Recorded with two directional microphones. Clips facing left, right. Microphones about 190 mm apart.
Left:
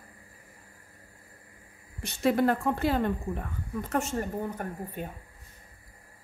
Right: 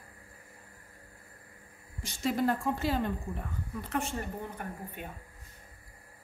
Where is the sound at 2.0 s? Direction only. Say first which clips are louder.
Left 5 dB; 60° left (ahead or behind); by 4.1 s 45° left (ahead or behind).